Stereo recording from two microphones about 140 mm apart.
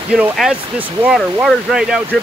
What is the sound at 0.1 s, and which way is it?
Speech, 5° right (ahead or behind).